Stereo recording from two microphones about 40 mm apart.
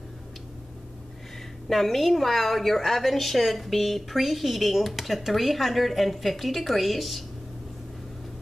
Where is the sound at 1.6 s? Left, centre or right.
Centre.